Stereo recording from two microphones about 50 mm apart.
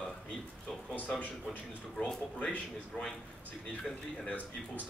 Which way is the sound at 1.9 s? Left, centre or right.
Centre.